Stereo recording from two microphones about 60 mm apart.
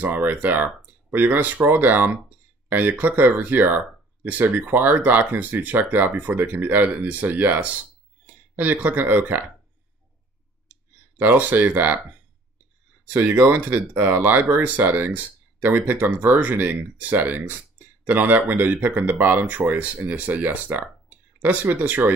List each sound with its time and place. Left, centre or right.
0.0 s speech: right
10.7 s clicking: right
13.0 s speech: right